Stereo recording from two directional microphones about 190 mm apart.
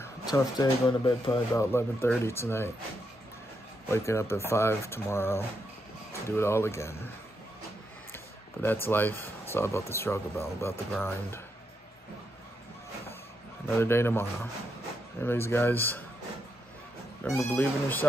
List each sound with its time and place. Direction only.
0.0 s speech: 20° left (ahead or behind)
1.5 s speech: 15° left (ahead or behind)
3.9 s speech: 15° left (ahead or behind)
8.8 s speech: 10° left (ahead or behind)
13.7 s speech: 10° left (ahead or behind)
17.2 s speech: 10° left (ahead or behind)